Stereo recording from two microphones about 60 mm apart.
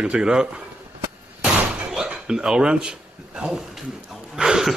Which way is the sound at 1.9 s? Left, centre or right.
Centre.